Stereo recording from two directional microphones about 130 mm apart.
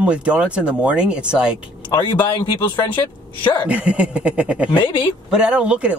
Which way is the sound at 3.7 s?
10° right (ahead or behind).